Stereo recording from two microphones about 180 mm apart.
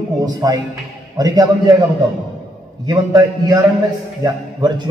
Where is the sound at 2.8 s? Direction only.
20° right (ahead or behind).